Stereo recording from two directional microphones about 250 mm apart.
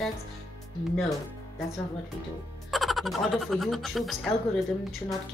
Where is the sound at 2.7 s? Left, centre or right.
Centre.